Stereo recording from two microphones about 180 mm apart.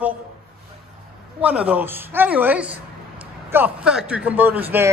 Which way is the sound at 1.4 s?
5° right (ahead or behind).